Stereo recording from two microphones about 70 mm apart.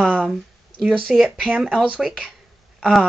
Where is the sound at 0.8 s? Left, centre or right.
Centre.